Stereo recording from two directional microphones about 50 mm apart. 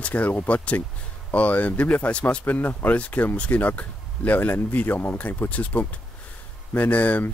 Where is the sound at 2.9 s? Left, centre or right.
Left.